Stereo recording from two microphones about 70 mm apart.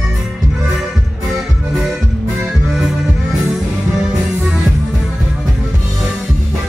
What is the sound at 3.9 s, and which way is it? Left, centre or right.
Music, centre.